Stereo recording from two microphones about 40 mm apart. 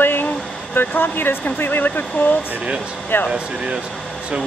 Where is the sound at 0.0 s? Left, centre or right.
Left.